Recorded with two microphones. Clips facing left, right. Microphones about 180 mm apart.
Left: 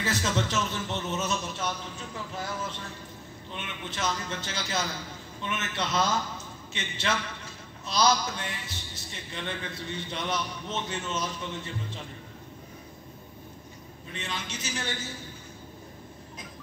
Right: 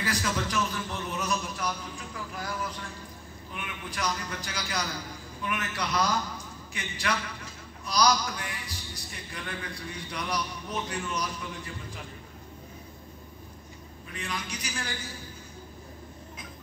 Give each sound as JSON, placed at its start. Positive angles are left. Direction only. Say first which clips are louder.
{"t": 0.0, "sound": "a man's voice", "louder": "left 2 dB", "side_deg": 25}
{"t": 14.1, "sound": "a man's voice", "louder": "even", "side_deg": 25}